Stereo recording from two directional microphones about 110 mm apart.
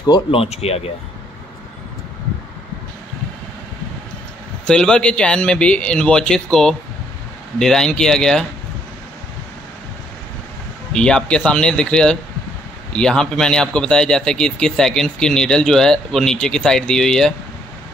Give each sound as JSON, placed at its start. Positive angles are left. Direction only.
{"t": 0.3, "sound": "speech", "side_deg": 65}
{"t": 4.6, "sound": "speech", "side_deg": 10}
{"t": 10.9, "sound": "speech", "side_deg": 5}